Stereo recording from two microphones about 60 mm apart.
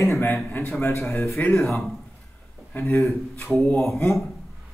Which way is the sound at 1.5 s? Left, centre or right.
Centre.